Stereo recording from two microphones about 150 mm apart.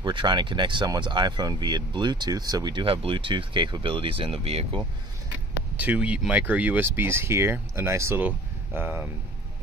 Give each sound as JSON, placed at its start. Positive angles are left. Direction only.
{"t": 0.0, "sound": "speech", "side_deg": -30}
{"t": 5.8, "sound": "speech", "side_deg": -10}